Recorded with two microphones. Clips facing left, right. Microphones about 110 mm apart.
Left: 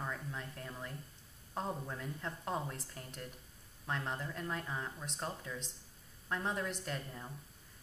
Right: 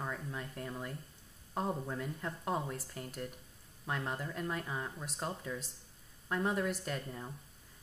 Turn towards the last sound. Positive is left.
turn(degrees=-5)  # may be behind; listen again after turning